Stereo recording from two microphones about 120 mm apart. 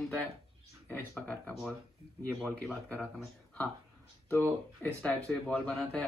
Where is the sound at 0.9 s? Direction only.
15° left (ahead or behind).